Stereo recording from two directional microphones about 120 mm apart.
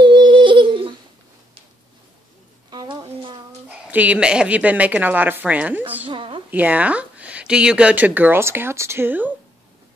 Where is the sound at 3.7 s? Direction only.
10° right (ahead or behind).